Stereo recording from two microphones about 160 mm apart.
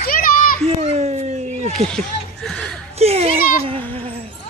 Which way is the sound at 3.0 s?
40° right (ahead or behind).